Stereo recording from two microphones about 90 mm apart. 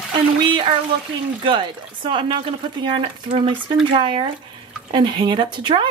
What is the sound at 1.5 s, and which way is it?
Speech, 70° right (ahead or behind).